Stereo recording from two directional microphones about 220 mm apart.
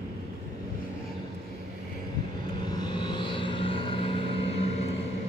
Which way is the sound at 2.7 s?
20° left (ahead or behind).